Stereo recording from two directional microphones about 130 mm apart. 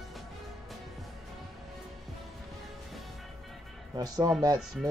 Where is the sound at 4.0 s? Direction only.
30° right (ahead or behind).